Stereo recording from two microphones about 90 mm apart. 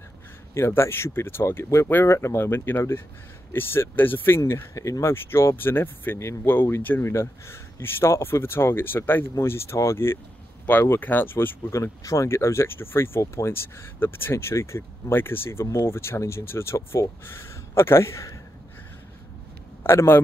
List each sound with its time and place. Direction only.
0.6 s speech: 25° left (ahead or behind)
19.8 s a man's voice: 25° left (ahead or behind)